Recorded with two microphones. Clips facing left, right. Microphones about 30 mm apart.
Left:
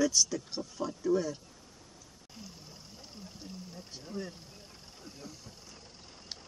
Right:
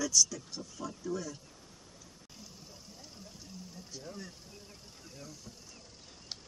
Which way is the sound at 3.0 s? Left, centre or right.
Left.